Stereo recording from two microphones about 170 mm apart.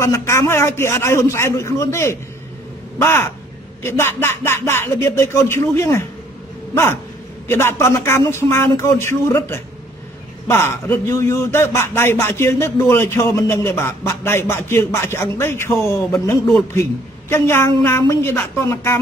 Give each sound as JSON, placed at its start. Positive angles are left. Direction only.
{"t": 0.0, "sound": "speech", "side_deg": 15}
{"t": 17.3, "sound": "speech", "side_deg": 15}